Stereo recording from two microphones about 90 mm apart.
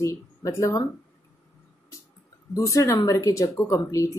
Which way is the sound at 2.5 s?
35° left (ahead or behind).